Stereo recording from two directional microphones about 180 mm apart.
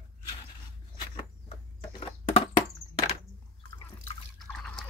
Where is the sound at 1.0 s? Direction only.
25° left (ahead or behind).